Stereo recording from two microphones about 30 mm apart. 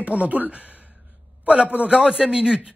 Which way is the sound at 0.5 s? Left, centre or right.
Right.